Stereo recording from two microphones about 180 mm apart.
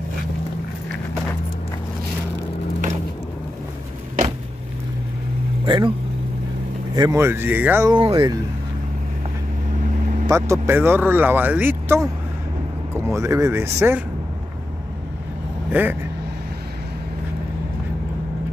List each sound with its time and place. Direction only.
5.7 s speech: 25° right (ahead or behind)
7.0 s speech: 15° right (ahead or behind)
7.9 s speech: 30° right (ahead or behind)
10.2 s speech: 15° right (ahead or behind)
15.7 s speech: 10° right (ahead or behind)